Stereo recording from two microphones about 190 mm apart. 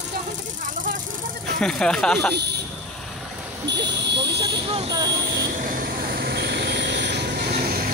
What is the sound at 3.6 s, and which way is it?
Speech, 65° right (ahead or behind).